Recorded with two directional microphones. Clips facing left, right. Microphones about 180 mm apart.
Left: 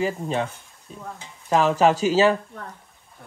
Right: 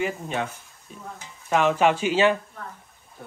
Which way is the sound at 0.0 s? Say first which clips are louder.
Left 3 dB; 30° left (ahead or behind).